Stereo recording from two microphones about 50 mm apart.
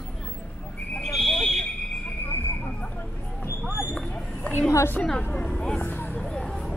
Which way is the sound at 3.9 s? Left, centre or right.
Centre.